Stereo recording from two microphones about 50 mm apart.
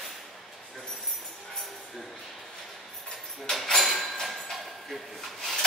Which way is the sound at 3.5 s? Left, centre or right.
Centre.